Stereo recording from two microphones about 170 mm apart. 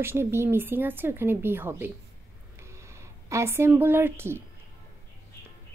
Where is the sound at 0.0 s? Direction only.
15° right (ahead or behind).